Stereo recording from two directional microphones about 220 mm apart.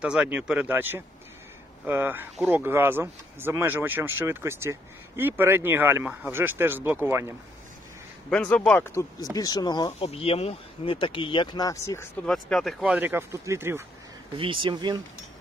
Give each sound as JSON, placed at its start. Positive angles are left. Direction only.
{"t": 0.0, "sound": "speech", "side_deg": -5}
{"t": 8.3, "sound": "speech", "side_deg": 5}
{"t": 12.3, "sound": "speech", "side_deg": 0}
{"t": 14.3, "sound": "speech", "side_deg": -25}